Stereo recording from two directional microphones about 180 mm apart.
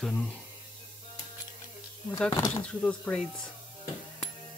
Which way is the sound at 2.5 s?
5° left (ahead or behind).